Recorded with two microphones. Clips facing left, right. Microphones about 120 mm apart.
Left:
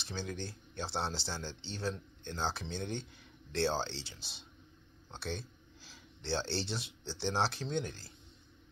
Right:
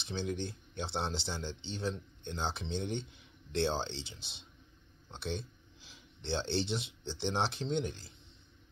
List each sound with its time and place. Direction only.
0.0 s speech: 20° right (ahead or behind)
5.2 s a sound: 15° right (ahead or behind)
6.2 s speech: 20° right (ahead or behind)